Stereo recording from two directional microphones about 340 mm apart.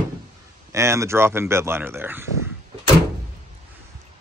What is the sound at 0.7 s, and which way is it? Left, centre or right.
A man's voice, centre.